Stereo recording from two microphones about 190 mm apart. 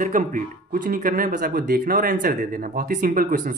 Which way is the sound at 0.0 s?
45° right (ahead or behind).